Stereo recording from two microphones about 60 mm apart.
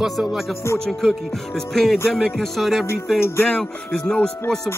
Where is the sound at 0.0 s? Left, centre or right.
Centre.